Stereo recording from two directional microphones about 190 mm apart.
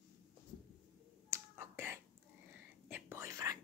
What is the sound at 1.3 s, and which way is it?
Finger snapping, 10° right (ahead or behind).